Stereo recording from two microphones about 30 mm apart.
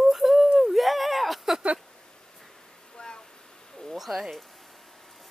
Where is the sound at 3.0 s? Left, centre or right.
Left.